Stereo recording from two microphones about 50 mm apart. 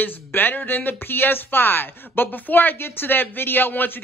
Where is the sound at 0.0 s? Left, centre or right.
Left.